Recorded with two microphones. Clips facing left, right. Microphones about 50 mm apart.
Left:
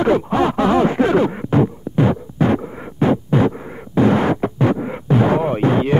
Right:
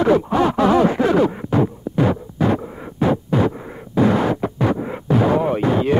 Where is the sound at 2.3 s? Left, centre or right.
Left.